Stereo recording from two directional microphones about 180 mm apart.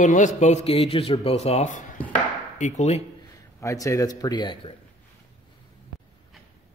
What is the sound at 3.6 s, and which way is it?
A man's voice, 15° left (ahead or behind).